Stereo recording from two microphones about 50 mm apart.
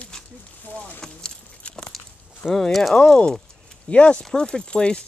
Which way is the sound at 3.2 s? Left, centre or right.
Centre.